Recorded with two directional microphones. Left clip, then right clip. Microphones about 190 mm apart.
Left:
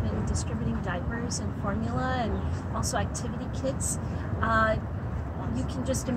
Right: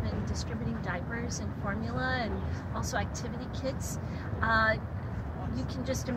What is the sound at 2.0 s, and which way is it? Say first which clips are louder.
Speech: left 2 dB; 10° left (ahead or behind).